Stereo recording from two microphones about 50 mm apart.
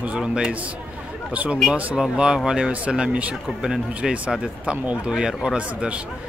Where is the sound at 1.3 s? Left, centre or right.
Right.